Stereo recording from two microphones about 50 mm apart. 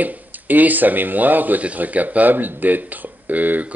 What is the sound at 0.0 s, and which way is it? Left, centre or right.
Speech, right.